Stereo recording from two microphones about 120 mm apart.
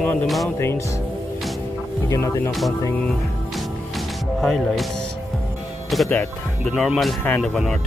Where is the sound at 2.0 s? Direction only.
25° left (ahead or behind).